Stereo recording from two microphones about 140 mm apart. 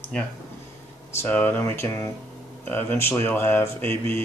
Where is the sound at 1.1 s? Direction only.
15° left (ahead or behind).